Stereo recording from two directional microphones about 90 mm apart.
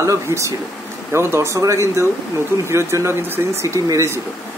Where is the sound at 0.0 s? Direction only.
35° right (ahead or behind).